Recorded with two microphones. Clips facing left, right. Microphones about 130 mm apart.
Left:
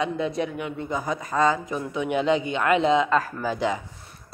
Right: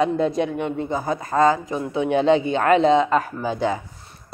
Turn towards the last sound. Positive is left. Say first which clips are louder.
# right 2 dB
turn(degrees=-30)  # may be behind; listen again after turning